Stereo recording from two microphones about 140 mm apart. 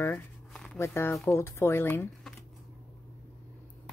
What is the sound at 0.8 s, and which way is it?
Speech, 20° left (ahead or behind).